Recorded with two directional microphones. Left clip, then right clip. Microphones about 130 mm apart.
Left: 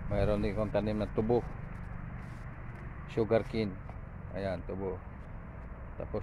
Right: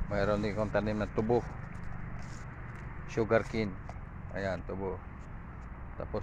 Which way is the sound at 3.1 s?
10° left (ahead or behind).